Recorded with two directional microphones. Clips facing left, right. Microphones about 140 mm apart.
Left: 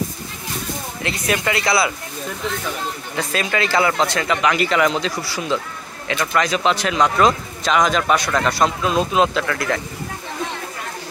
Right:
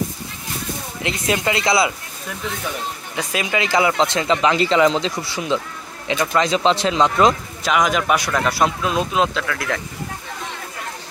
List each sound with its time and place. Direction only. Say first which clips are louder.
1.0 s speech: right 1 dB; 20° right (ahead or behind)
3.2 s speech: left 1 dB; 15° right (ahead or behind)
7.6 s speech: left 1 dB; 10° right (ahead or behind)